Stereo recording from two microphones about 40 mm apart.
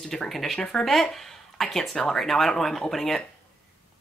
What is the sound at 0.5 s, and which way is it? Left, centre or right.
Speech, centre.